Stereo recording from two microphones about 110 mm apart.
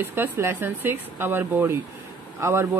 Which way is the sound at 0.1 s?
20° right (ahead or behind).